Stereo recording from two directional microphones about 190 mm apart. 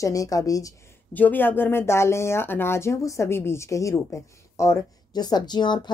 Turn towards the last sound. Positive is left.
turn(degrees=25)  # may be behind; listen again after turning